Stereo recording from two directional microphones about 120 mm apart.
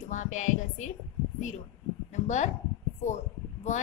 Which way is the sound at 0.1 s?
90° left.